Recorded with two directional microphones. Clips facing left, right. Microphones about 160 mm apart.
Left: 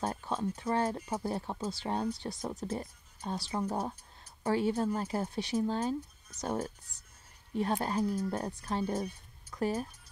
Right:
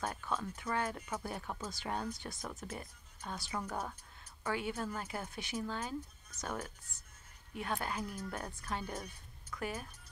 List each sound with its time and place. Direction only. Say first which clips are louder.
0.0 s speech: left 5 dB; 30° left (ahead or behind)